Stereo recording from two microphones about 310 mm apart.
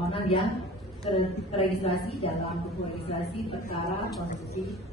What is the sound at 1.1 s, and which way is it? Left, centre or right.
A woman's voice, centre.